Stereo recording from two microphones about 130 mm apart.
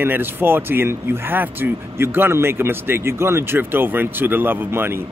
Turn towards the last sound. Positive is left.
turn(degrees=-15)  # may be behind; listen again after turning